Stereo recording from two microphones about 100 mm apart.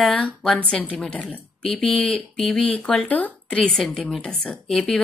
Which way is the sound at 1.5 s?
10° left (ahead or behind).